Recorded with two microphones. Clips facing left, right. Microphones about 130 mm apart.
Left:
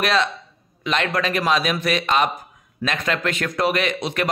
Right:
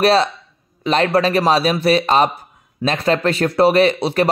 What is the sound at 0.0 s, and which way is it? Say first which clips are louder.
Speech: right 6 dB; 35° right (ahead or behind).